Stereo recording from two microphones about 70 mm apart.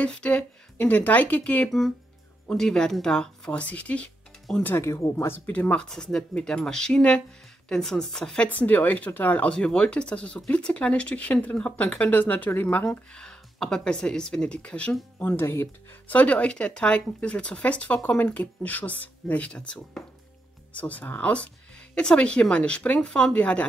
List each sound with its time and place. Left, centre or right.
0.0 s speech: centre
2.4 s speech: centre
4.5 s speech: centre
4.8 s speech: left
5.1 s speech: left; by 8.5 s centre
8.5 s speech: left
15.1 s speech: left
16.1 s speech: left